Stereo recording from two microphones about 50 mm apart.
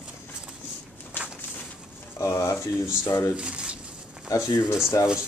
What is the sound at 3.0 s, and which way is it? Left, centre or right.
Speech, left.